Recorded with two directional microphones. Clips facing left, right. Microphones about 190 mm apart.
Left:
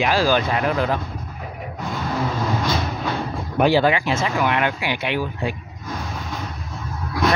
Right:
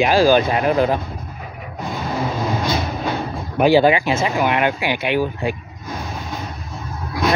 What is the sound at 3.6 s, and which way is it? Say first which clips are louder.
Speech: right 4 dB; 10° right (ahead or behind).